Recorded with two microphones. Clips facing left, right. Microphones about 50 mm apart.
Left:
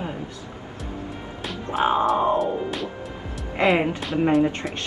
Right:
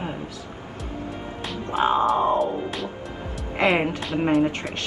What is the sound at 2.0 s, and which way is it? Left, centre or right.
Speech, centre.